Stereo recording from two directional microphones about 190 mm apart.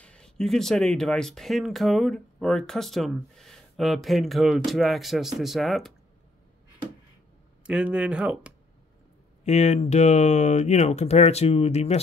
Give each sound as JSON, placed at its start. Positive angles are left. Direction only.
{"t": 0.0, "sound": "speech", "side_deg": 5}
{"t": 7.6, "sound": "speech", "side_deg": -5}
{"t": 9.4, "sound": "speech", "side_deg": 35}